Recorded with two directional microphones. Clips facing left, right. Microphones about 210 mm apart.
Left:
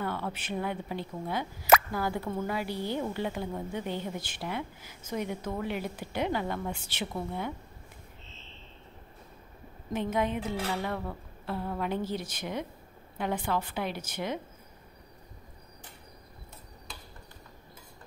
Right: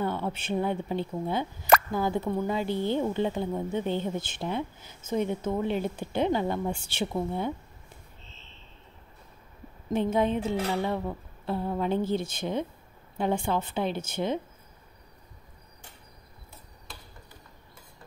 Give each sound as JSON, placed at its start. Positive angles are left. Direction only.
{"t": 0.0, "sound": "a woman's voice", "side_deg": -25}
{"t": 9.9, "sound": "a woman's voice", "side_deg": -30}